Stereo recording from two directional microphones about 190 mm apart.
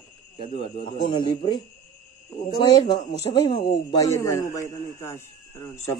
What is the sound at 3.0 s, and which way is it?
Speech, 35° left (ahead or behind).